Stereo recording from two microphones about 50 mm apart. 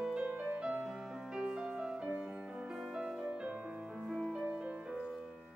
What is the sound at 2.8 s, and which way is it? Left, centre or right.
Music, centre.